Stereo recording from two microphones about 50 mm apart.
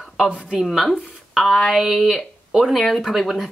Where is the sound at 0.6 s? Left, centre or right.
Centre.